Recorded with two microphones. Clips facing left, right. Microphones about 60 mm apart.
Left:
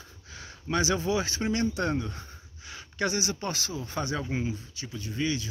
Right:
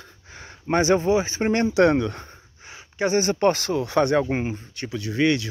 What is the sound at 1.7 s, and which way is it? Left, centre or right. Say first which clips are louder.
Speech: right 11 dB; right.